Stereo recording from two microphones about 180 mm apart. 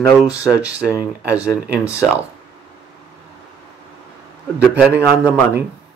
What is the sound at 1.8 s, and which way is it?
Speech, 15° left (ahead or behind).